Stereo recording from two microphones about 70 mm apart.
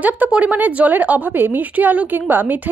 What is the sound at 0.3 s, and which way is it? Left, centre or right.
A woman's voice, centre.